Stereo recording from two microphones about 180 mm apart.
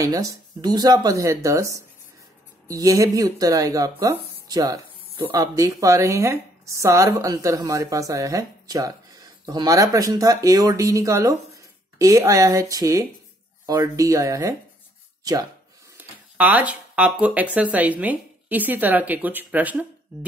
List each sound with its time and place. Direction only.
0.0 s speech: 20° right (ahead or behind)
16.0 s a sound: 10° right (ahead or behind)
17.6 s speech: 10° right (ahead or behind)